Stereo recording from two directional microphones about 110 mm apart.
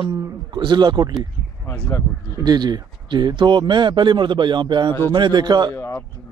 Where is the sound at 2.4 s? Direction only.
40° right (ahead or behind).